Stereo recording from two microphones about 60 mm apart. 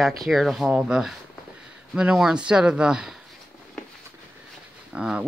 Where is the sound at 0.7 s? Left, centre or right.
Centre.